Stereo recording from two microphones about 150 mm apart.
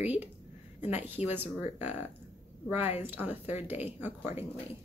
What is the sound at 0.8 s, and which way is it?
Speech, 10° right (ahead or behind).